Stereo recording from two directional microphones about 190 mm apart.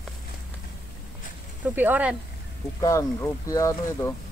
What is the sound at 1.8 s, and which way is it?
Speech, 10° right (ahead or behind).